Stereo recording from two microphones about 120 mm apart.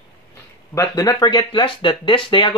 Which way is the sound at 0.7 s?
30° left (ahead or behind).